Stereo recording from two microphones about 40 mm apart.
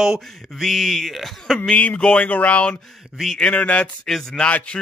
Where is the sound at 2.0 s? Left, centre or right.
Left.